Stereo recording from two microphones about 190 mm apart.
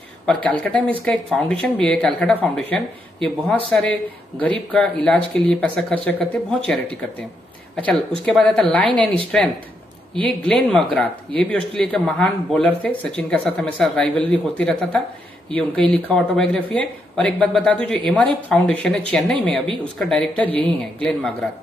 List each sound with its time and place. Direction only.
0.3 s speech: 5° left (ahead or behind)
10.5 s speech: 5° left (ahead or behind)